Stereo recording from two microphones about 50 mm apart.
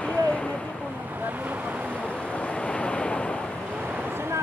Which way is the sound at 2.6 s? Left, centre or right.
Left.